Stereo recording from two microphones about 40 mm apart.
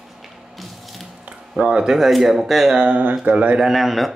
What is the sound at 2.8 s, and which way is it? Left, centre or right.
Speech, right.